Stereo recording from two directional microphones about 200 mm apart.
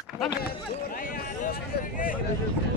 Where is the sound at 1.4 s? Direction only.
45° left (ahead or behind).